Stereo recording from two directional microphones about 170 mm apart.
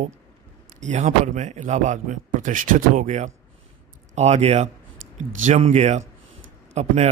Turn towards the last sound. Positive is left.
turn(degrees=-40)  # may be behind; listen again after turning